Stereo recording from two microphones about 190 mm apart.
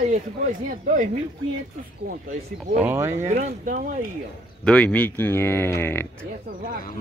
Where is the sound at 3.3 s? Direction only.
40° right (ahead or behind).